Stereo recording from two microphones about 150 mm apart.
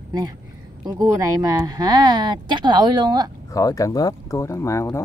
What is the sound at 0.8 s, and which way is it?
Speech, 25° right (ahead or behind).